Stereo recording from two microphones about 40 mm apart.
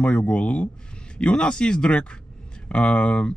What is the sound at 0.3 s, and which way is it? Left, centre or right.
Speech, left.